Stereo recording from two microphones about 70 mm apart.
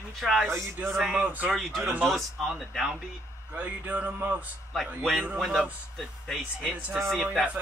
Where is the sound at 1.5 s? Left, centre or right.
Centre.